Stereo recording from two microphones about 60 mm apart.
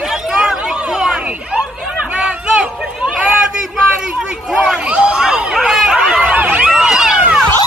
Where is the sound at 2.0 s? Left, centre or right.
Centre.